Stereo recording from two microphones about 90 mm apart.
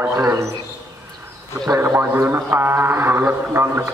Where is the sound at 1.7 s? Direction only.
30° right (ahead or behind).